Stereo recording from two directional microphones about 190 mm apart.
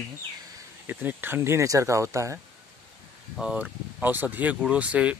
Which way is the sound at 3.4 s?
5° right (ahead or behind).